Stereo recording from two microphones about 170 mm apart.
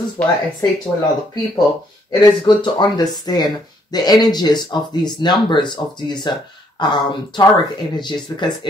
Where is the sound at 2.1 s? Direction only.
25° left (ahead or behind).